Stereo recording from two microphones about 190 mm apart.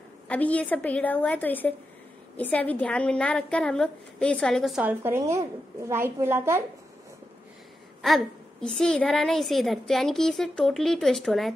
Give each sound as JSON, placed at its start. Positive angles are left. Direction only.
{"t": 0.3, "sound": "a woman's voice", "side_deg": 5}
{"t": 8.0, "sound": "a sound", "side_deg": 0}
{"t": 8.7, "sound": "a woman's voice", "side_deg": 5}